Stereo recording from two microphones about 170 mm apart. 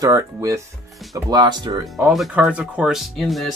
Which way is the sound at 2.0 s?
5° right (ahead or behind).